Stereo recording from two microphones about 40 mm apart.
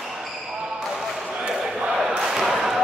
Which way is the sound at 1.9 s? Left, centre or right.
Centre.